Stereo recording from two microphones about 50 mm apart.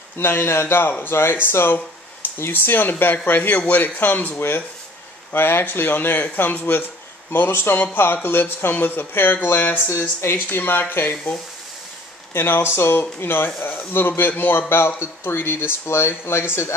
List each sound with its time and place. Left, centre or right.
0.2 s speech: left
5.3 s speech: left
9.8 s speech: left
10.3 s speech: left
12.4 s speech: left